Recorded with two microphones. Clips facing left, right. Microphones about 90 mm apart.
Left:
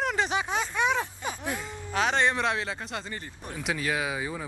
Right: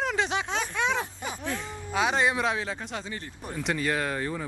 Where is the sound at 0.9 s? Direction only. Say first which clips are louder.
Left 1 dB; 20° left (ahead or behind).